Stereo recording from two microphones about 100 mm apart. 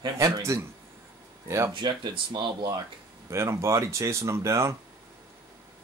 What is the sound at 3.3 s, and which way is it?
Speech, 30° right (ahead or behind).